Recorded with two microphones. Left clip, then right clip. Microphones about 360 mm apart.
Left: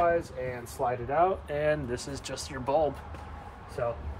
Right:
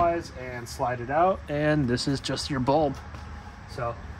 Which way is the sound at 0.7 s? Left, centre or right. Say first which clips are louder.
Right 2 dB; right.